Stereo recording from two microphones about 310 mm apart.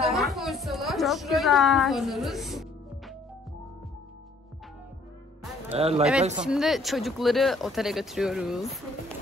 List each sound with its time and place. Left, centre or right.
0.0 s a sound: centre
5.8 s speech: centre
6.4 s speech: centre